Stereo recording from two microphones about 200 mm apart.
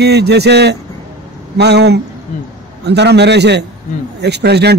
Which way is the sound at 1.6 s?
55° right (ahead or behind).